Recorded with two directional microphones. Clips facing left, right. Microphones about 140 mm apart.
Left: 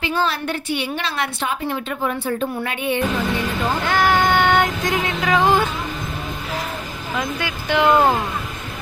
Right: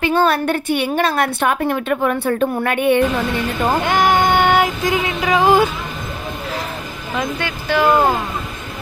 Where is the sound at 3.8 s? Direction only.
20° right (ahead or behind).